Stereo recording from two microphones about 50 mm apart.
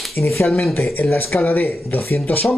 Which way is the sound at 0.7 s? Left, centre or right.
Left.